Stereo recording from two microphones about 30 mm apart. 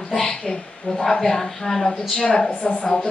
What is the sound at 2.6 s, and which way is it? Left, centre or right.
Speech, left.